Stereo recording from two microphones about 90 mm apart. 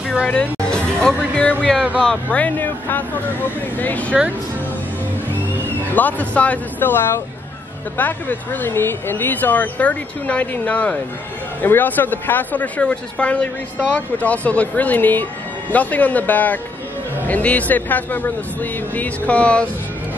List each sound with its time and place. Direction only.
0.2 s speech: 15° left (ahead or behind)
4.1 s speech: 5° right (ahead or behind)
5.9 s speech: 20° left (ahead or behind)